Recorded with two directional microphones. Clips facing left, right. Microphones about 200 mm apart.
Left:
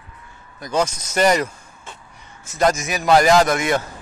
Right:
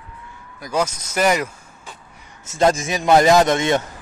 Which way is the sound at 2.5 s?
25° right (ahead or behind).